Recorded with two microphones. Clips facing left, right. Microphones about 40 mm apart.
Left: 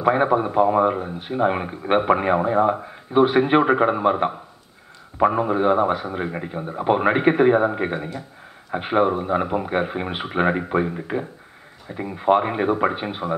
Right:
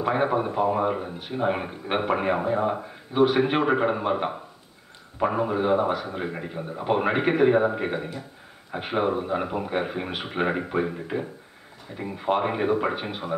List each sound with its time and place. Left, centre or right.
0.0 s speech: centre